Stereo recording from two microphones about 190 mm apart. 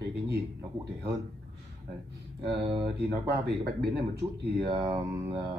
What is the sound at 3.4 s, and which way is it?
Speech, 60° right (ahead or behind).